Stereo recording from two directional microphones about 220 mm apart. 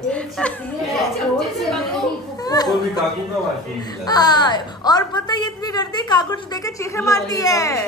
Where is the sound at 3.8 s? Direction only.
20° left (ahead or behind).